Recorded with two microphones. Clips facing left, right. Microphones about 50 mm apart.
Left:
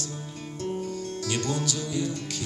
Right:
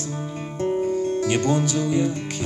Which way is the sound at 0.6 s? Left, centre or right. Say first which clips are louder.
Right 10 dB; right.